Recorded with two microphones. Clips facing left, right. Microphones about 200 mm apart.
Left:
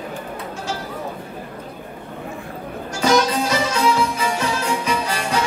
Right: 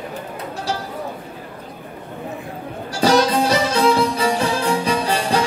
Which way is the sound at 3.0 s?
35° right (ahead or behind).